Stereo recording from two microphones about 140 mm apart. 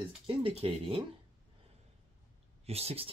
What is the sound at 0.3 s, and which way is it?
Speech, 40° right (ahead or behind).